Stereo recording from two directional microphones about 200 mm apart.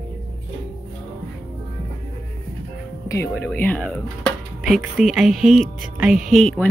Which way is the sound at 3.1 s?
10° left (ahead or behind).